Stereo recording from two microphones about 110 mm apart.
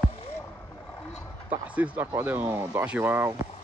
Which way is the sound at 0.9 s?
15° left (ahead or behind).